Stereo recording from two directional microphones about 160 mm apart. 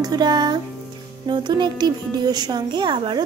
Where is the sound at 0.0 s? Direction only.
25° right (ahead or behind).